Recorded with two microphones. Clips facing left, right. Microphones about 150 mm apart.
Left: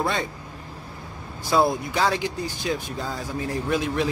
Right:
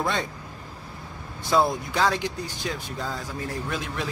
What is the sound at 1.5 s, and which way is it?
A man's voice, 10° left (ahead or behind).